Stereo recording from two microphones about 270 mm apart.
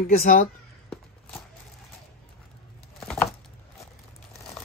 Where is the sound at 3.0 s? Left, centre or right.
Centre.